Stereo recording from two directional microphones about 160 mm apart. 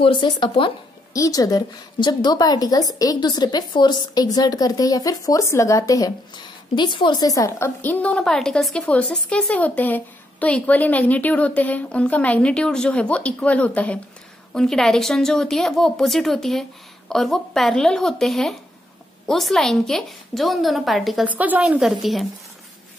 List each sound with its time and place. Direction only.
0.0 s a woman's voice: 30° left (ahead or behind); by 22.2 s centre (ahead or behind)